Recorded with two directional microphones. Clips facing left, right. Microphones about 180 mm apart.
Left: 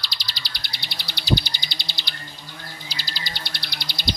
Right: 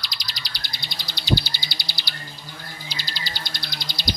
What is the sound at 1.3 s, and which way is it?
Bird, 15° left (ahead or behind).